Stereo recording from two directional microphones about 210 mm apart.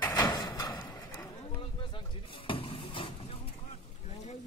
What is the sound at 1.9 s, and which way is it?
Vehicle, 25° left (ahead or behind).